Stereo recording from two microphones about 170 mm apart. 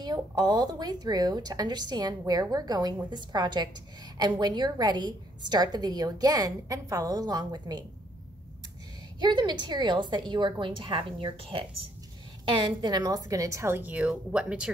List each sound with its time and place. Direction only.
0.0 s a woman's voice: 25° right (ahead or behind)
9.2 s a woman's voice: 25° right (ahead or behind); by 14.7 s 5° right (ahead or behind)